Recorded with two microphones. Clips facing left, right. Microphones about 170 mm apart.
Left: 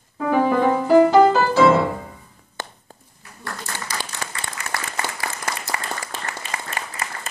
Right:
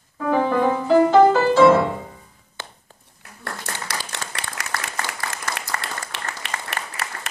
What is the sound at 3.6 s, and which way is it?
Applause, 75° right (ahead or behind).